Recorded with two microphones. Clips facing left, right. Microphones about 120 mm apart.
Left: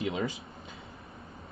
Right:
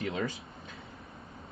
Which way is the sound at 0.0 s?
15° left (ahead or behind).